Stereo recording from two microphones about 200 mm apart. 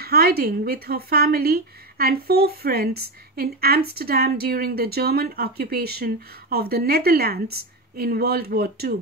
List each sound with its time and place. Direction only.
0.0 s speech: 50° right (ahead or behind)